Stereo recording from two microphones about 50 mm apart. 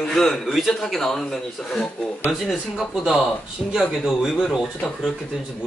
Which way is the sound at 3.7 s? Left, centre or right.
Centre.